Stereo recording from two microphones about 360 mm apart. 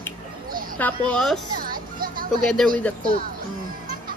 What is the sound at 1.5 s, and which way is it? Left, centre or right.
Music, right.